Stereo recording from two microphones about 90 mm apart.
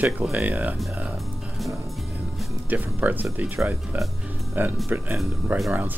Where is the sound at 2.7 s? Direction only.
20° right (ahead or behind).